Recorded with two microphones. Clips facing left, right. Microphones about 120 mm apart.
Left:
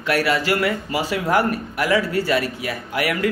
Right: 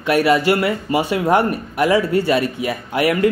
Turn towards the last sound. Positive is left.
turn(degrees=-25)  # may be behind; listen again after turning